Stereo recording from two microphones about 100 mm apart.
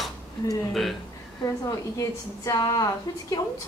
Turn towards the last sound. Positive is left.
turn(degrees=35)  # may be behind; listen again after turning